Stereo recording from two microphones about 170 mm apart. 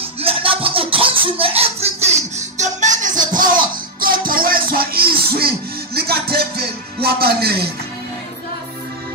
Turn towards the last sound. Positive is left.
turn(degrees=-65)  # may be behind; listen again after turning